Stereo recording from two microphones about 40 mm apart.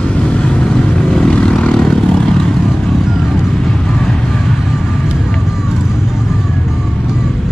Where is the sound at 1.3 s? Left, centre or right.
Left.